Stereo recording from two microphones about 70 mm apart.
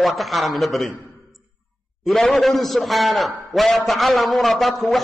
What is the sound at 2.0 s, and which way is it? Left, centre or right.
A man's voice, centre.